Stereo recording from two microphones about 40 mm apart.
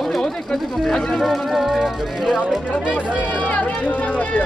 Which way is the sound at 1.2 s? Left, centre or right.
Centre.